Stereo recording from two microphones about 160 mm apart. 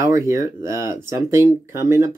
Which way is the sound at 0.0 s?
20° right (ahead or behind).